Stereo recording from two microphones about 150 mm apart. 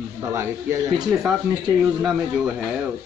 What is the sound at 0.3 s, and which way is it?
Speech, 15° right (ahead or behind).